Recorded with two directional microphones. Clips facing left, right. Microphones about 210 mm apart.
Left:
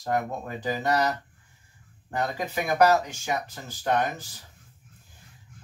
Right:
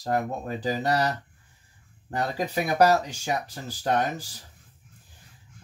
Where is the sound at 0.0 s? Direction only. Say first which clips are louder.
Right 1 dB; 35° right (ahead or behind).